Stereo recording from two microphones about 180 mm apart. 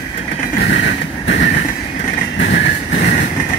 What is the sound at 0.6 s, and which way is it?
Vehicle, 80° left.